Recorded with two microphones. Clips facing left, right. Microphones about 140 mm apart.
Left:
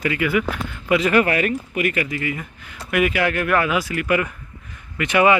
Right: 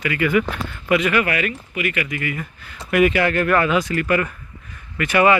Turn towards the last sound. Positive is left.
turn(degrees=15)  # may be behind; listen again after turning